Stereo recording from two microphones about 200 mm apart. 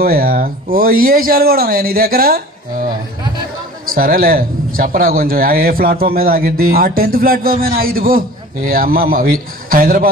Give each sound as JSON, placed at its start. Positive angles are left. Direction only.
{"t": 0.0, "sound": "a man's voice", "side_deg": -45}
{"t": 3.9, "sound": "a man's voice", "side_deg": -45}